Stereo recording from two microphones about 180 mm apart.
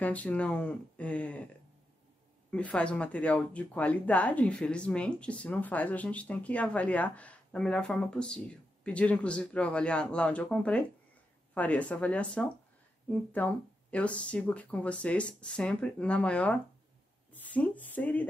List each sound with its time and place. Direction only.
0.0 s speech: 10° left (ahead or behind)
2.5 s speech: 5° left (ahead or behind)